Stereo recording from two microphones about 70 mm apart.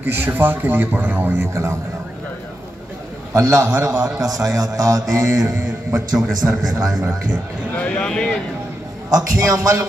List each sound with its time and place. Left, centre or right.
0.0 s speech: right
3.3 s a man's voice: right
3.8 s a man's voice: right
6.1 s a man's voice: centre
7.7 s a sound: centre
8.1 s a man's voice: centre
9.1 s a man's voice: right